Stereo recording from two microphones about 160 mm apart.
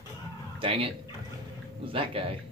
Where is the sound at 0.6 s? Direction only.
35° right (ahead or behind).